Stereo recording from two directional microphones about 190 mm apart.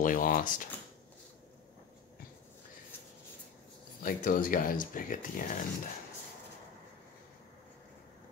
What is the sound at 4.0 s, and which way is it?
Speech, 50° left (ahead or behind).